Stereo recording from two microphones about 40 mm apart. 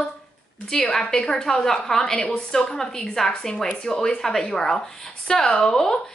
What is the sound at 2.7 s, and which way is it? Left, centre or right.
A woman's voice, centre.